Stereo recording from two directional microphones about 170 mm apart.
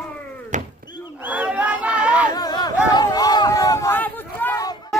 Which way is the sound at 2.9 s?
25° left (ahead or behind).